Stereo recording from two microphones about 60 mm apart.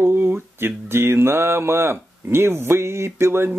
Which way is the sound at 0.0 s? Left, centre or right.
Right.